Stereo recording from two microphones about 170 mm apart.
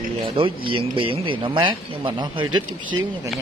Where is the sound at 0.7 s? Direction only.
30° right (ahead or behind).